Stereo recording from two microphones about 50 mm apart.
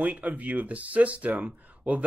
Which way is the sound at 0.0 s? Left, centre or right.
Right.